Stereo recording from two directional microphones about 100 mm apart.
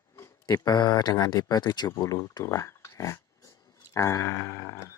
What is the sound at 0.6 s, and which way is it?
Speech, 45° left (ahead or behind).